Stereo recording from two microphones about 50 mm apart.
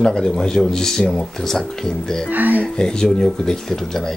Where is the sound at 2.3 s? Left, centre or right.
Right.